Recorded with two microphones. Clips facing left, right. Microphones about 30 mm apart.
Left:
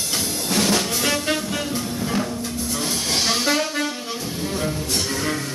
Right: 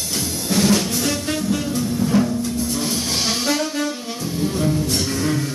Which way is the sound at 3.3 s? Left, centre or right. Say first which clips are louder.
Left 1 dB; centre.